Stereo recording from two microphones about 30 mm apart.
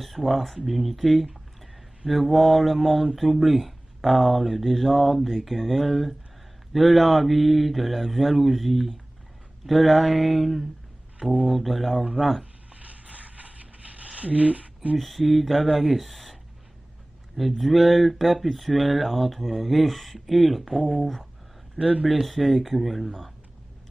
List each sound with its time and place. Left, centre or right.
0.0 s speech: centre
12.7 s a sound: right
14.1 s speech: right
15.0 s speech: centre
17.4 s speech: centre
21.7 s speech: right
22.0 s speech: centre